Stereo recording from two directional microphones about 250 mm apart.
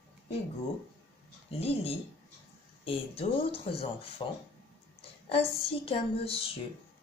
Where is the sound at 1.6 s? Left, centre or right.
Left.